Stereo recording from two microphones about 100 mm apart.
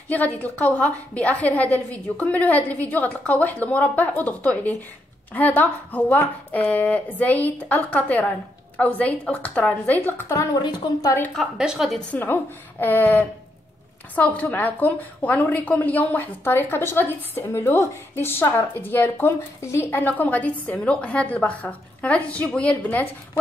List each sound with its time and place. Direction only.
0.1 s a woman's voice: 15° left (ahead or behind)
10.5 s speech: 45° left (ahead or behind)
11.3 s a woman's voice: 10° right (ahead or behind)
12.1 s a woman's voice: 20° left (ahead or behind)